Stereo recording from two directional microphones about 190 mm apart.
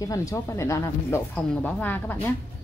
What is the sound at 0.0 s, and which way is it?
Speech, 15° left (ahead or behind).